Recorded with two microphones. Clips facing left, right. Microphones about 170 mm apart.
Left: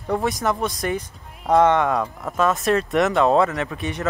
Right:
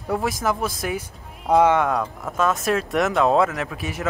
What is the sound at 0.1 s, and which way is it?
Speech, centre (ahead or behind).